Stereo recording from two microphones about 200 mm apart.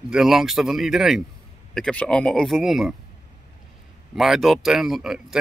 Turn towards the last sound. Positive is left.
turn(degrees=0)  # may be behind; listen again after turning